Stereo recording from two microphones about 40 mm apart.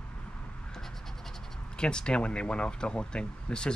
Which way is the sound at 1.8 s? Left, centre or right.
Left.